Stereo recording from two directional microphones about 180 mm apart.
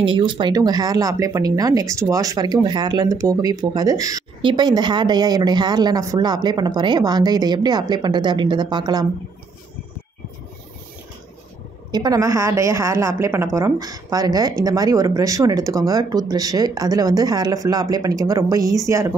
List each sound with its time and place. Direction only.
0.0 s speech: 25° right (ahead or behind)
11.9 s speech: 20° right (ahead or behind)